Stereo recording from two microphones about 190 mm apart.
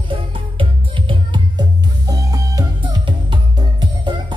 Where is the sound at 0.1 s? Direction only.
25° right (ahead or behind).